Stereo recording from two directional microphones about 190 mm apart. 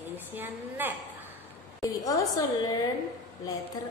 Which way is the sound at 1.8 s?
15° left (ahead or behind).